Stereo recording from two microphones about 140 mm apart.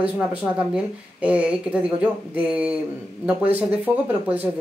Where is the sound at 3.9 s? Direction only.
15° right (ahead or behind).